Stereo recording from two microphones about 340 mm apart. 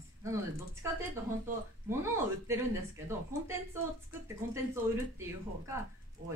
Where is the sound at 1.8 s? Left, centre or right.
Centre.